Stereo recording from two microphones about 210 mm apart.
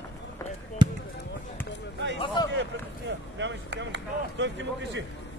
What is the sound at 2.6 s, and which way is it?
Speech, 60° right (ahead or behind).